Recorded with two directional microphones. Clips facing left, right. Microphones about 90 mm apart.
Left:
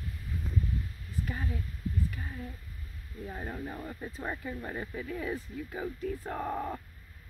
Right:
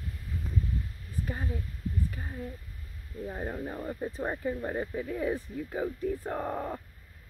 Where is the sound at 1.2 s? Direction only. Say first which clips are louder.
Right 2 dB; 15° right (ahead or behind).